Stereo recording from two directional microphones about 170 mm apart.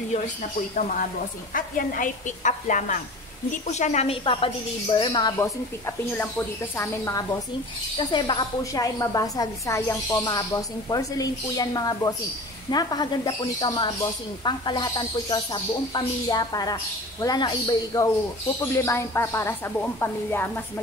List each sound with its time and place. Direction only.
0.1 s a woman's voice: 45° left (ahead or behind); by 20.4 s 15° left (ahead or behind)